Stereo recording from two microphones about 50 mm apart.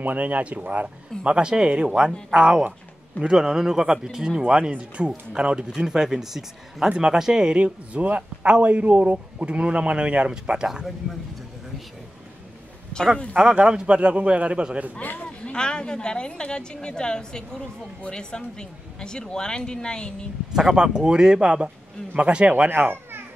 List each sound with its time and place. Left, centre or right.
0.0 s speech: right; by 6.9 s centre
6.9 s speech: centre
13.4 s speech: centre
15.0 s a man's voice: left
15.4 s a woman's voice: centre
20.5 s speech: centre
22.7 s a child's voice: right